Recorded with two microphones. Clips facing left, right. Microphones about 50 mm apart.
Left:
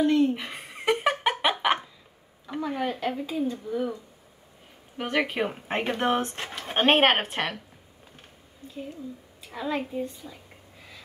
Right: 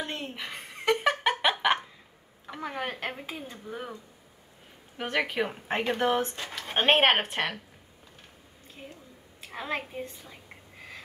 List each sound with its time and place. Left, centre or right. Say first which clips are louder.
0.0 s speech: left 14 dB; right
0.3 s a sound: left 6 dB; centre
2.7 s a woman's voice: left 5 dB; right
4.9 s speech: left 2 dB; centre
6.2 s speech: left 2 dB; left
6.7 s speech: left 2 dB; centre
9.5 s a woman's voice: left 4 dB; right